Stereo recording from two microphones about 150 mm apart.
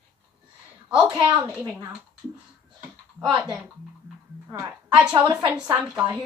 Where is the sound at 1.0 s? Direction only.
35° right (ahead or behind).